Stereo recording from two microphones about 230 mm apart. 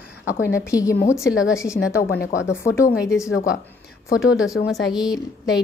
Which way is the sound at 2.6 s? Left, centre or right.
Centre.